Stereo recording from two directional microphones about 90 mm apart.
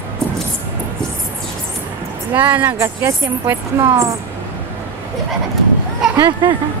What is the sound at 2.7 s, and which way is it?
A woman's voice, 30° right (ahead or behind).